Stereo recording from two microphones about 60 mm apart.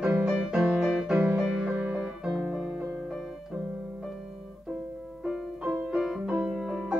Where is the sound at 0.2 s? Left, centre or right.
Centre.